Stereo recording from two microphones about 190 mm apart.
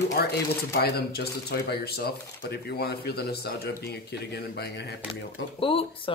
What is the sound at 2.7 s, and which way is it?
Speech, 55° left (ahead or behind).